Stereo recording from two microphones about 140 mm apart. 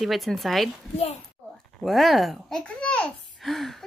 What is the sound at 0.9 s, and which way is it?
Speech, 45° left (ahead or behind).